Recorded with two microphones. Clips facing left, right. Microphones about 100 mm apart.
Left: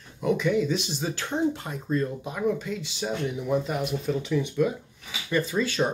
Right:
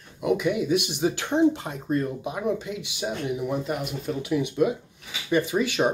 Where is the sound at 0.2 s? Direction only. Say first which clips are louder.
Even; 10° right (ahead or behind).